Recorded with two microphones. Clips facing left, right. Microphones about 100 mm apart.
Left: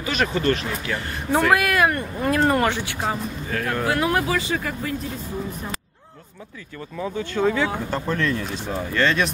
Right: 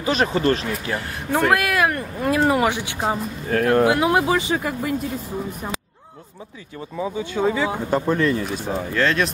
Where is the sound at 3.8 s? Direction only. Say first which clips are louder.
Right 4 dB; 20° right (ahead or behind).